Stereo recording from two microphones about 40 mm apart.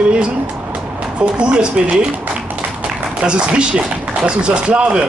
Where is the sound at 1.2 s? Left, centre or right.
Right.